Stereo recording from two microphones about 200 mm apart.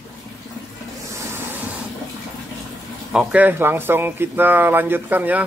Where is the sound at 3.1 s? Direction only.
10° right (ahead or behind).